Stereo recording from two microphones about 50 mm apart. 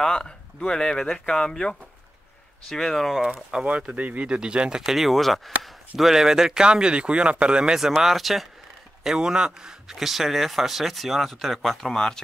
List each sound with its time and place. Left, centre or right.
0.0 s speech: centre
2.7 s speech: centre
3.6 s speech: right
7.9 s speech: centre
9.0 s speech: centre